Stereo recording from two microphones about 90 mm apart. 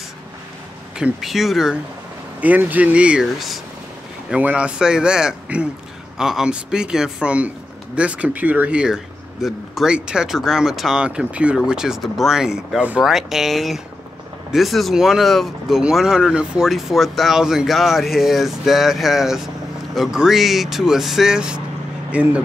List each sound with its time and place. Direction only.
0.9 s speech: 5° right (ahead or behind)
2.4 s speech: 20° right (ahead or behind)
3.3 s speech: centre (ahead or behind)
4.3 s speech: 15° right (ahead or behind)